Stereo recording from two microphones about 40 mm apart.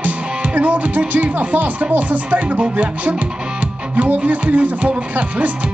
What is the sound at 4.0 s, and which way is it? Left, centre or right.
Speech, right.